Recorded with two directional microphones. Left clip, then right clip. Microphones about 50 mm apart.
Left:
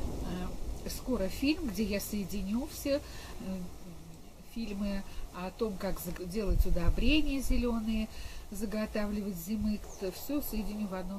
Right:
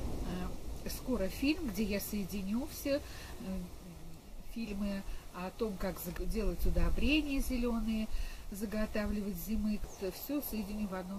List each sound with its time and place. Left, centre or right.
0.3 s speech: centre
4.6 s speech: centre